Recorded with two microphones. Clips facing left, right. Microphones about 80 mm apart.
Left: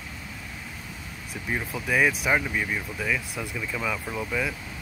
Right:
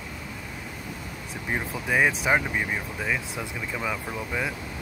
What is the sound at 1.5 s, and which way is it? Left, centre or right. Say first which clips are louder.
Speech: even; right.